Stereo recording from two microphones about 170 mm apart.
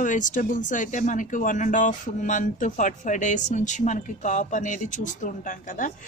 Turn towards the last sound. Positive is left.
turn(degrees=50)  # may be behind; listen again after turning